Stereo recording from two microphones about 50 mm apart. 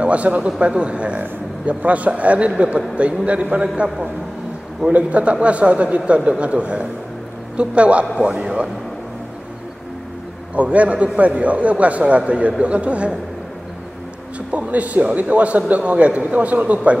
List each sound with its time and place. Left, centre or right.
0.0 s a man's voice: right
10.5 s a man's voice: right
14.5 s a man's voice: right